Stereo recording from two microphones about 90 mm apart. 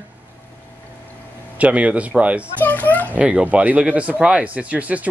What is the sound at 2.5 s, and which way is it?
Speech, 20° left (ahead or behind).